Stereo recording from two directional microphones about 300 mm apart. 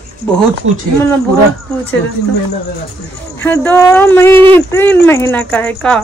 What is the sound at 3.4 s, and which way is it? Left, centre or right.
Speech, centre.